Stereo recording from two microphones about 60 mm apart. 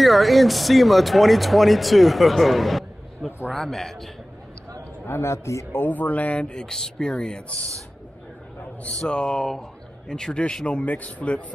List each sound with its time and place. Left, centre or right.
0.0 s speech: centre
5.0 s a man's voice: left
5.7 s speech: left; by 7.6 s centre
9.0 s a man's voice: centre